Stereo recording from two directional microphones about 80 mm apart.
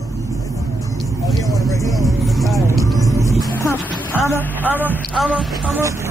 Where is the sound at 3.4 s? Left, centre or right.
Left.